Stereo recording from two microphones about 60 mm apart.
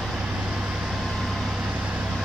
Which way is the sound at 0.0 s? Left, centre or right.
Centre.